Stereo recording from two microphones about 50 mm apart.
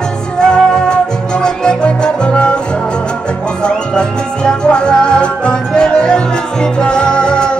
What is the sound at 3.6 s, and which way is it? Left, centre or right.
Music, centre.